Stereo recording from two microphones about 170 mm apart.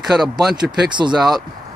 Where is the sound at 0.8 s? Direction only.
25° right (ahead or behind).